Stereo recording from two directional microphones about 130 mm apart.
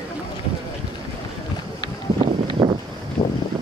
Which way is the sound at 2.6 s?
30° right (ahead or behind).